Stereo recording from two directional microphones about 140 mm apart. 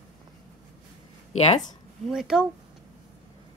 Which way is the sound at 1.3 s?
50° left (ahead or behind).